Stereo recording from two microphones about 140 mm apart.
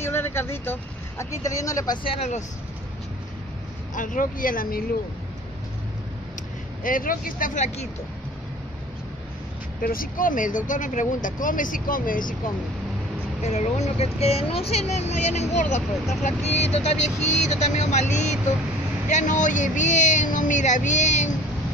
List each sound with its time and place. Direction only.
0.0 s speech: 15° left (ahead or behind)
2.0 s speech: 55° left (ahead or behind)
3.9 s speech: 70° left (ahead or behind); by 4.8 s 85° left
6.8 s speech: 80° left; by 7.9 s 55° left (ahead or behind)
9.8 s speech: 90° left
13.4 s speech: 55° left (ahead or behind)